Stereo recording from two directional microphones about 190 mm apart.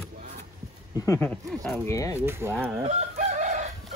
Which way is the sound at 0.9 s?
15° left (ahead or behind).